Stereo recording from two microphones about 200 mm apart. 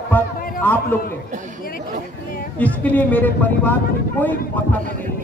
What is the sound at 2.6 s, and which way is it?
A man's voice, 5° left (ahead or behind).